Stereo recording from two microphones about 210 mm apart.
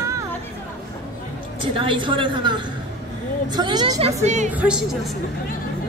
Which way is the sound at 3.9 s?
30° right (ahead or behind).